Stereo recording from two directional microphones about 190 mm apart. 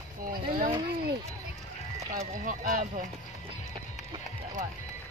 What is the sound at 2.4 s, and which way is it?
Speech, 45° right (ahead or behind).